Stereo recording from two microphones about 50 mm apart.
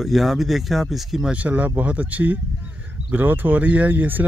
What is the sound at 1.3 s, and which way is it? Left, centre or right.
Speech, right.